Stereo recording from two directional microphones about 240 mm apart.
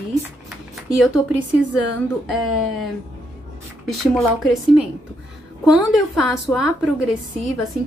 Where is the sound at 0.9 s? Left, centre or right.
Centre.